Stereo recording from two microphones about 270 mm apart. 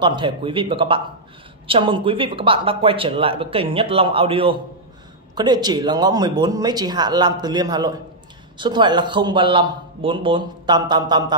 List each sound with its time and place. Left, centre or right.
0.0 s a man's voice: centre